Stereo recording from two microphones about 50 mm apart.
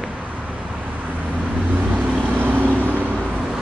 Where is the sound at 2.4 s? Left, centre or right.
Right.